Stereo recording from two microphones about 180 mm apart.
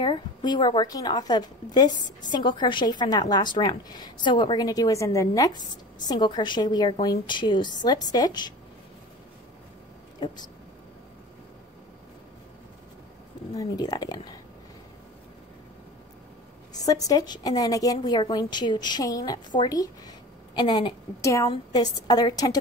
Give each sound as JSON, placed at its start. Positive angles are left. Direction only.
{"t": 0.0, "sound": "a woman's voice", "side_deg": 25}
{"t": 10.2, "sound": "a woman's voice", "side_deg": 25}
{"t": 13.6, "sound": "a woman's voice", "side_deg": 20}
{"t": 16.7, "sound": "a woman's voice", "side_deg": 20}